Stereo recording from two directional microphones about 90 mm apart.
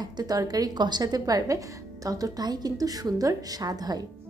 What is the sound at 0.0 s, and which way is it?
A woman's voice, 45° right (ahead or behind).